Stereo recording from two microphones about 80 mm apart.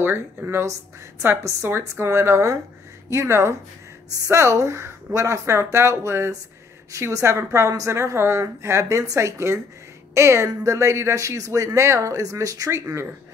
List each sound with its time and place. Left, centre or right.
0.0 s a woman's voice: right